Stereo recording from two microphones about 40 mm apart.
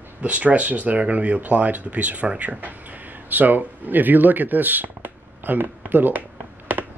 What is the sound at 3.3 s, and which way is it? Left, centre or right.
Speech, right.